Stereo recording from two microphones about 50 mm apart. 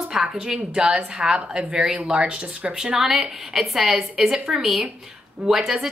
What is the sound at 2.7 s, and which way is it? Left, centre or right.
A woman's voice, centre.